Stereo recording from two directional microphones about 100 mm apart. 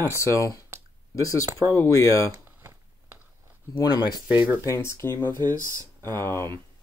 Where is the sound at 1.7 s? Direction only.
30° left (ahead or behind).